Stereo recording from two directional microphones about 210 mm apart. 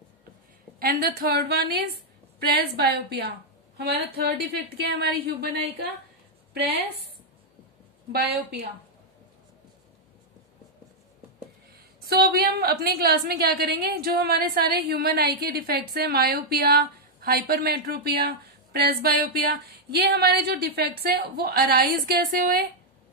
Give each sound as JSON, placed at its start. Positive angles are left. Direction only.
{"t": 0.7, "sound": "a woman's voice", "side_deg": -45}
{"t": 8.1, "sound": "a woman's voice", "side_deg": -50}
{"t": 12.1, "sound": "a woman's voice", "side_deg": -45}